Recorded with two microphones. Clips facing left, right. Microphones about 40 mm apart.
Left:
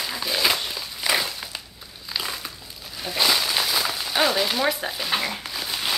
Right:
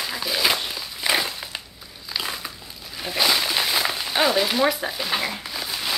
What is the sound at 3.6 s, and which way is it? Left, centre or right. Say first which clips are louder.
Rain on surface: right 1 dB; right.